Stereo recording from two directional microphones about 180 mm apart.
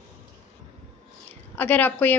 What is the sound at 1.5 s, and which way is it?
Speech, 10° left (ahead or behind).